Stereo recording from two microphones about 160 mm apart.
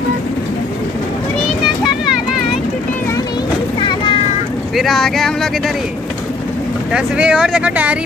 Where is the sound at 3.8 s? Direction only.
30° left (ahead or behind).